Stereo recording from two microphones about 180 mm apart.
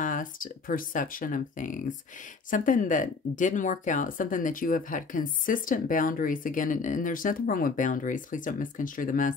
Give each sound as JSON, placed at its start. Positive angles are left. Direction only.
{"t": 0.0, "sound": "speech", "side_deg": 50}